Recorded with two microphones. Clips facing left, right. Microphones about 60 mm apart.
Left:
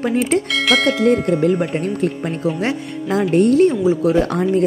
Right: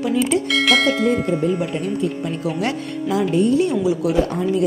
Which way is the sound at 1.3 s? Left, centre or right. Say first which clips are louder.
Left 4 dB; left.